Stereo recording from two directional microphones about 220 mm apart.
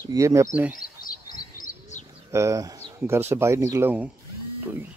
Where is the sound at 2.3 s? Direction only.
15° right (ahead or behind).